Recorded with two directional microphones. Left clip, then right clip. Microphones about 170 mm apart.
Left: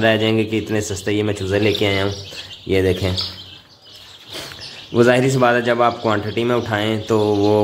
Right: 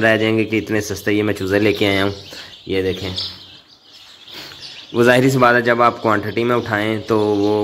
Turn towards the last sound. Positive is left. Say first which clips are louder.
# even
turn(degrees=-10)  # may be behind; listen again after turning